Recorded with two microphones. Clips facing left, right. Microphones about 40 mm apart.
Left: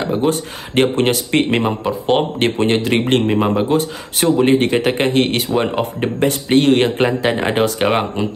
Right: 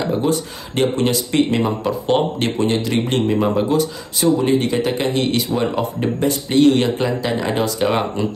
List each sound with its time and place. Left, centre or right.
0.0 s speech: left
0.3 s speech: left
1.8 s speech: centre
2.3 s speech: left
3.3 s speech: left
4.2 s speech: left